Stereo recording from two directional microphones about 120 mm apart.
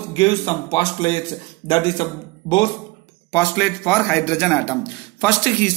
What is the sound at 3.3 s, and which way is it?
A man's voice, 20° left (ahead or behind).